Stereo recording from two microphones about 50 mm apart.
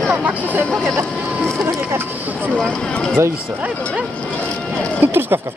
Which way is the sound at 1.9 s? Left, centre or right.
Right.